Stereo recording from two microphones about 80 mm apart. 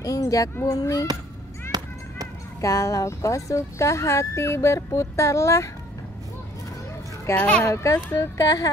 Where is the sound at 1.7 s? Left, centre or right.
Right.